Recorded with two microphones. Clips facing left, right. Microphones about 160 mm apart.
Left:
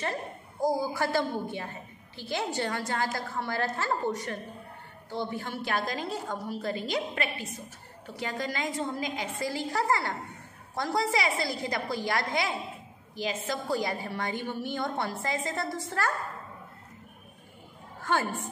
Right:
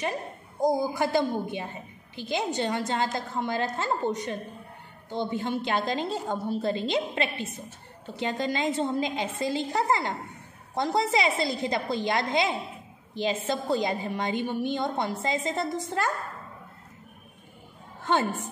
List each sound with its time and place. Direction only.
0.0 s a woman's voice: 15° right (ahead or behind)
18.0 s a woman's voice: 20° right (ahead or behind)